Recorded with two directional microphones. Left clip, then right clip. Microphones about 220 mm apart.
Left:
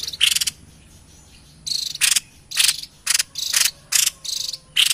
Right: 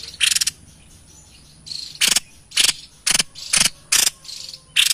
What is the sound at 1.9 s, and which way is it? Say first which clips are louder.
Cricket: right 4 dB; 15° right (ahead or behind).